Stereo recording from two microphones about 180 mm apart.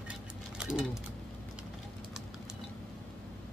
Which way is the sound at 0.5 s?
5° right (ahead or behind).